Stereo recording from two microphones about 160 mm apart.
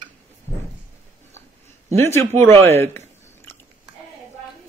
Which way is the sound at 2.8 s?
15° left (ahead or behind).